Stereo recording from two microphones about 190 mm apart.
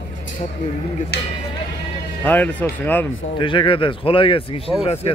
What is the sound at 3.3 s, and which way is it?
Speech, 25° left (ahead or behind).